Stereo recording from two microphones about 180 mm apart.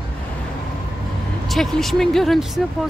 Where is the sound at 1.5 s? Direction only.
Centre (ahead or behind).